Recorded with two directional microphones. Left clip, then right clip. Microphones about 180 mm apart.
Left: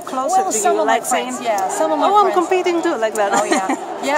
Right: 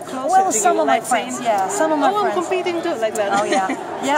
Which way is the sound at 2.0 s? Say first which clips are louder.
Left 4 dB; 45° left (ahead or behind).